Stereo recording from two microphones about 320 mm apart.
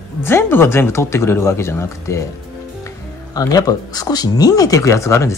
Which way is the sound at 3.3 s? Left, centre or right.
Centre.